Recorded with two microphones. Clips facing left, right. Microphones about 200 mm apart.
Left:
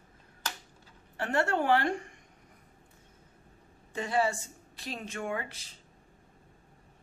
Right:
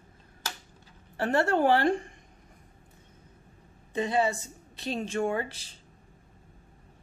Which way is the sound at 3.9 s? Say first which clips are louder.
Right 3 dB; 20° right (ahead or behind).